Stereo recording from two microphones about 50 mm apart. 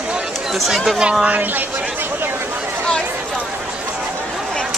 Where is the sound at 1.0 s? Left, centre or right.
Centre.